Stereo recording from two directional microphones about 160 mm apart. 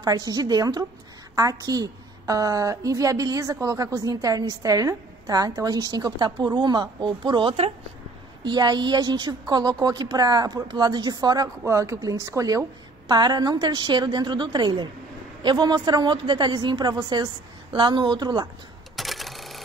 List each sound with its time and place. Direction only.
0.0 s a woman's voice: 25° right (ahead or behind)
18.9 s cash register: centre (ahead or behind)